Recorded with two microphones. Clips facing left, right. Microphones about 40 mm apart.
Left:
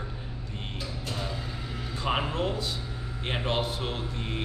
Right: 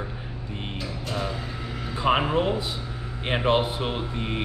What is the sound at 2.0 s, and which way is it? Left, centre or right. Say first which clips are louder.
Speech: right 7 dB; right.